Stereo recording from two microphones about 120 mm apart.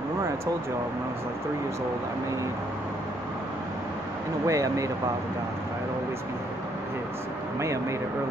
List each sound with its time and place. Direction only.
4.5 s speech: 25° right (ahead or behind)